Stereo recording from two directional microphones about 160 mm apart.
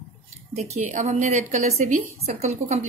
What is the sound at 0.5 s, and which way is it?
A woman's voice, 45° right (ahead or behind).